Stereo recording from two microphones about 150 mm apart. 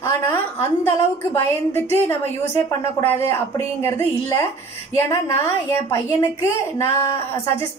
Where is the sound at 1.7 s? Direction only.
15° left (ahead or behind).